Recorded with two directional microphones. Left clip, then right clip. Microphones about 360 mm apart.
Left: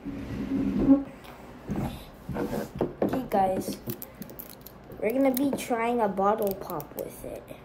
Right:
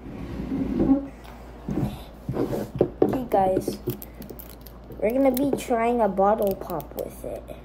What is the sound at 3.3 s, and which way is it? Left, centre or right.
Speech, centre.